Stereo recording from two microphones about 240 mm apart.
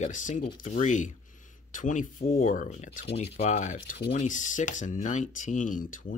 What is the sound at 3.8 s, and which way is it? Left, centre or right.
Speech, left.